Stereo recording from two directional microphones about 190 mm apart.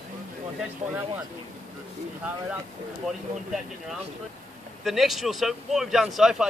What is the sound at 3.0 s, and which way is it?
Speech, centre (ahead or behind).